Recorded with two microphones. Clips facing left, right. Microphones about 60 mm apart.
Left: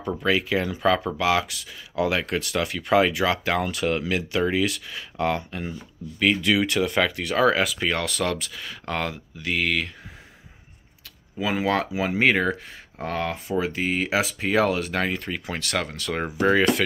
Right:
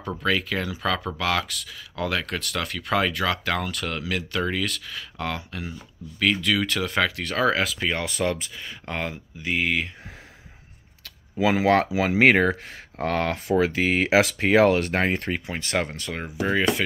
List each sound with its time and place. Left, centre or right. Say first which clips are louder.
0.0 s speech: left 2 dB; centre
5.6 s speech: left 2 dB; centre
6.8 s speech: left 2 dB; centre
7.9 s speech: even; centre
11.3 s speech: right 4 dB; right
11.9 s speech: right 2 dB; right
12.2 s speech: right 3 dB; right
15.6 s speech: right 2 dB; right
16.3 s speech: left 3 dB; centre